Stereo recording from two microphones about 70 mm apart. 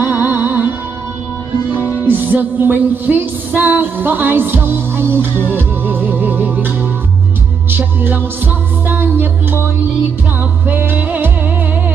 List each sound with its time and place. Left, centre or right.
0.0 s music: right
1.8 s music: right
10.7 s music: right